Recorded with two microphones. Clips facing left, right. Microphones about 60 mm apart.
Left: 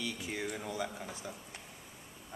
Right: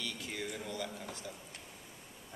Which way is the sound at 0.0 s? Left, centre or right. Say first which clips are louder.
Left 3 dB; centre.